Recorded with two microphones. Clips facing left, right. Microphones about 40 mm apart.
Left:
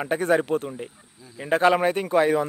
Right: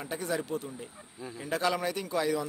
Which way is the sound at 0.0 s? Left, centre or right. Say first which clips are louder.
Left 11 dB; left.